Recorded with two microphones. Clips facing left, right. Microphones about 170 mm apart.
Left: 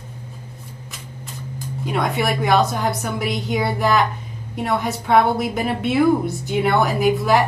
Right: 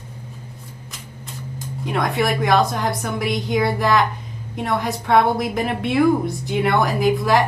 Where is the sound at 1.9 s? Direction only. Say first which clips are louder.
Right 1 dB; 5° left (ahead or behind).